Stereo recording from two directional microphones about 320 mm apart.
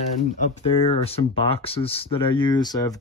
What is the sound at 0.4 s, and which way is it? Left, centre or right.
Speech, centre.